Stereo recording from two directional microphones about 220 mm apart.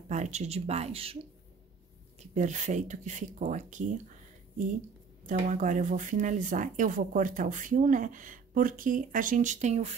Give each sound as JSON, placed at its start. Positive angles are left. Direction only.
{"t": 0.1, "sound": "speech", "side_deg": -30}
{"t": 2.1, "sound": "speech", "side_deg": -35}
{"t": 5.2, "sound": "speech", "side_deg": -35}